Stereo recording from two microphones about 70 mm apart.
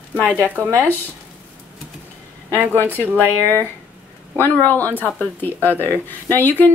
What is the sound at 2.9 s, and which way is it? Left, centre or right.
Speech, left.